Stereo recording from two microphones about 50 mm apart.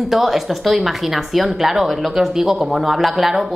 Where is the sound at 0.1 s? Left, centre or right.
Centre.